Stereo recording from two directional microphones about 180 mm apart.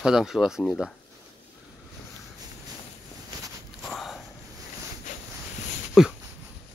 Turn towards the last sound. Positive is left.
turn(degrees=0)  # may be behind; listen again after turning